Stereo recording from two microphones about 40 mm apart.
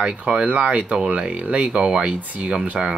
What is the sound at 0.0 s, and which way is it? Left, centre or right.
Speech, right.